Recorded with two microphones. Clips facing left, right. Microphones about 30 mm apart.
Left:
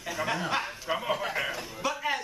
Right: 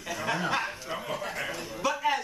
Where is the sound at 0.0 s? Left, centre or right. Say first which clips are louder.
Even; centre.